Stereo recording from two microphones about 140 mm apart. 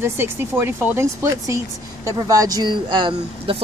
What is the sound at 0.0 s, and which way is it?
Speech, 15° right (ahead or behind).